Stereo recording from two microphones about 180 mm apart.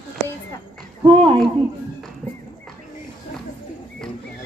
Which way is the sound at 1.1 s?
30° right (ahead or behind).